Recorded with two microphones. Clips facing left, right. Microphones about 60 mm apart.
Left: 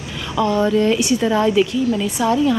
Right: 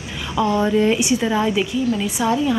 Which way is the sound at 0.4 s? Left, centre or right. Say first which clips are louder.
Left 1 dB; centre.